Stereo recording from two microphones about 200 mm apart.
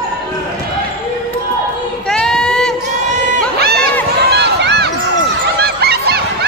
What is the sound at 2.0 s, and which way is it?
Child singing, 5° left (ahead or behind).